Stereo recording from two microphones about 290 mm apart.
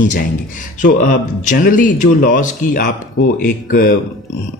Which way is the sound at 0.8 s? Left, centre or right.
Left.